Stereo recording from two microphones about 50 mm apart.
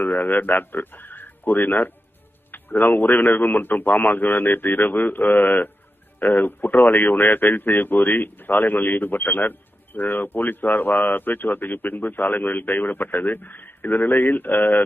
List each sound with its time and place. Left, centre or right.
0.0 s a man's voice: left